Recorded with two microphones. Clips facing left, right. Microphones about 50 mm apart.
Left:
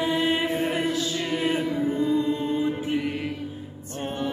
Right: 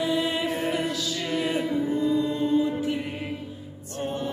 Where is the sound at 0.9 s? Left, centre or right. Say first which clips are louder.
Left 3 dB; left.